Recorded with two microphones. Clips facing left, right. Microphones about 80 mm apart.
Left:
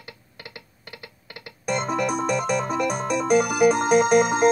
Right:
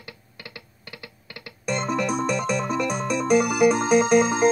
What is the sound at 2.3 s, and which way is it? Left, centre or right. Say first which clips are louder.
Music: left 1 dB; left.